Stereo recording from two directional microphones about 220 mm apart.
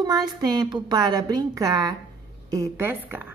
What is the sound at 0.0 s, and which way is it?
Speech, 15° right (ahead or behind).